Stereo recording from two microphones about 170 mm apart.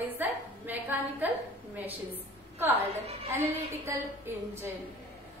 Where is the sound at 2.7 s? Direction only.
35° right (ahead or behind).